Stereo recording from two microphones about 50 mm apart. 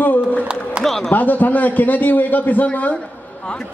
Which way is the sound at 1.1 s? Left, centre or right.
Left.